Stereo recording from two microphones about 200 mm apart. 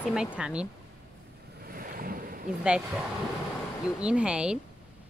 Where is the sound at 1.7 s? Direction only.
45° right (ahead or behind).